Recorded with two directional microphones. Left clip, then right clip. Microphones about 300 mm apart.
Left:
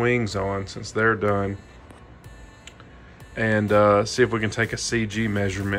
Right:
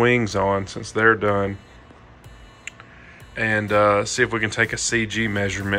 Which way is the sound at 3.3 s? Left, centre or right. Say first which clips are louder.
Even; centre.